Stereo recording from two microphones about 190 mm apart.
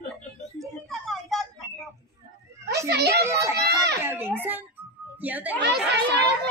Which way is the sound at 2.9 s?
60° right (ahead or behind).